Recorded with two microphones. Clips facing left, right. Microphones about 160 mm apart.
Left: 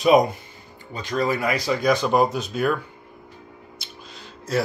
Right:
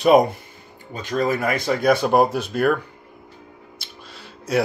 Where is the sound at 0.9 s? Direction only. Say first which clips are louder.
Right 2 dB; 45° right (ahead or behind).